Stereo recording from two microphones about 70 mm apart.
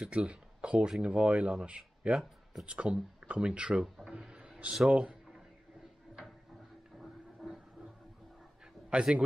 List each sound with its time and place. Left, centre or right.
0.0 s speech: centre
3.8 s a sound: centre
7.0 s train: centre
8.9 s speech: centre